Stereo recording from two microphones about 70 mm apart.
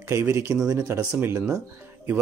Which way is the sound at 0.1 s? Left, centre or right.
Right.